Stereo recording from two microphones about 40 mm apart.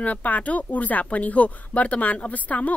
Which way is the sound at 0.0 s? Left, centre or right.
Left.